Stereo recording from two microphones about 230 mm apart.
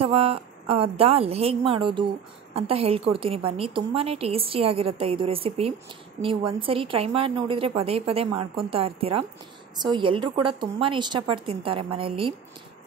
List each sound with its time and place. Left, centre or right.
0.0 s a woman's voice: right